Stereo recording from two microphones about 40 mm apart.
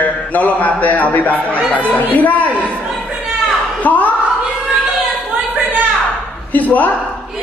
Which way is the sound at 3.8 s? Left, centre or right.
Left.